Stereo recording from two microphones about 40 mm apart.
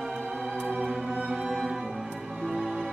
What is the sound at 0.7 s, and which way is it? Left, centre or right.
Music, centre.